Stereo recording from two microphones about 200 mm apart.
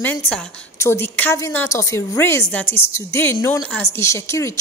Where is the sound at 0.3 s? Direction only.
10° left (ahead or behind).